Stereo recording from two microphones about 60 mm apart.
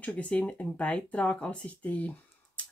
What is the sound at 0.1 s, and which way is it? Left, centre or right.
Speech, left.